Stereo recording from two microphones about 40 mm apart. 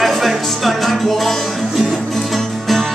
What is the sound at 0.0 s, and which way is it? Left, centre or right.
Music, centre.